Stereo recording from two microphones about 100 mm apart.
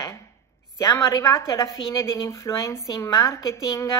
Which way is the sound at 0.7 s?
30° left (ahead or behind).